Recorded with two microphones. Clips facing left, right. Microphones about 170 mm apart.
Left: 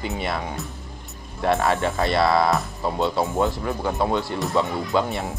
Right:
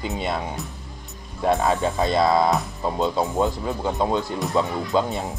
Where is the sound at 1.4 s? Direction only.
15° right (ahead or behind).